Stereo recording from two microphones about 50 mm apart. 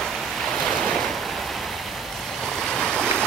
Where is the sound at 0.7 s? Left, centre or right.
Centre.